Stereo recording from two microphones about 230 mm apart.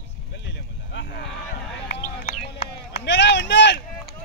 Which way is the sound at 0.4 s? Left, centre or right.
Left.